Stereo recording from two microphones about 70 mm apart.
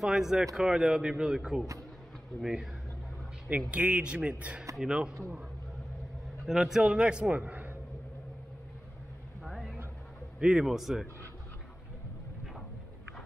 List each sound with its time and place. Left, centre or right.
0.0 s a man's voice: centre
3.7 s a man's voice: centre
6.4 s a man's voice: centre; by 7.7 s right
9.4 s vehicle: centre
10.4 s speech: centre